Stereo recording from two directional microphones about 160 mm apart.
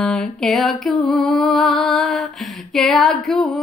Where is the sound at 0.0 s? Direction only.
5° left (ahead or behind).